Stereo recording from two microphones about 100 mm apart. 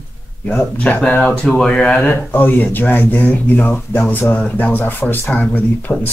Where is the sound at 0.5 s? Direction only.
20° left (ahead or behind).